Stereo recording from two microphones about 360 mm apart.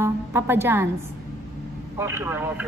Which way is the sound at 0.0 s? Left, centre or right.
Centre.